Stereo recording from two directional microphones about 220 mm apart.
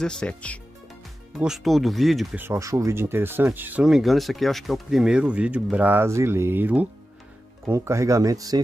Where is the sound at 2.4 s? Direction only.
15° right (ahead or behind).